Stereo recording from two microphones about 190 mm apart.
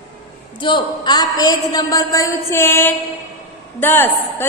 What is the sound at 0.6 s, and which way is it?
A woman's voice, 25° left (ahead or behind).